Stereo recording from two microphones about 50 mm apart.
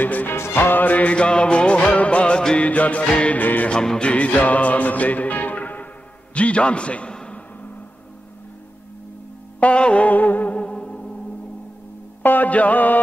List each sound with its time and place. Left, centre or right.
0.0 s music: left
0.3 s music: left
3.3 s music: left
3.7 s music: centre
4.1 s music: left
6.3 s a man's voice: left
9.6 s music: left
10.6 s music: centre
12.2 s music: left